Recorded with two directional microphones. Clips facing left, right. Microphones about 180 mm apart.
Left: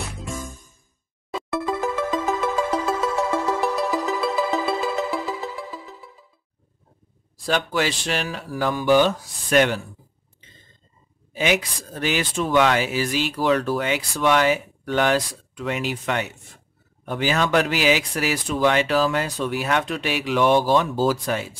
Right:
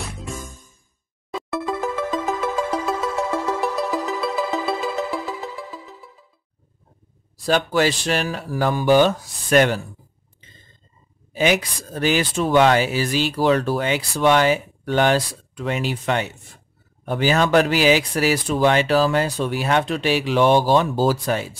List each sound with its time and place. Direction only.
1.3 s music: centre (ahead or behind)
7.4 s speech: 40° right (ahead or behind)
11.3 s speech: 40° right (ahead or behind)